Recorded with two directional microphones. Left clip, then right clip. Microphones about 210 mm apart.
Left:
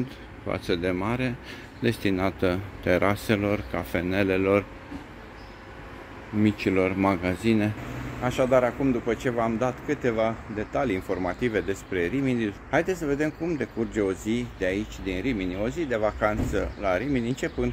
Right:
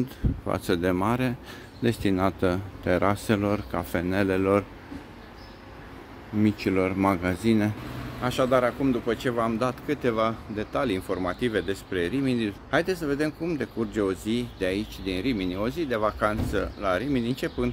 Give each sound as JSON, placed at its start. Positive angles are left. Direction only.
{"t": 0.5, "sound": "speech", "side_deg": -15}
{"t": 6.4, "sound": "speech", "side_deg": 0}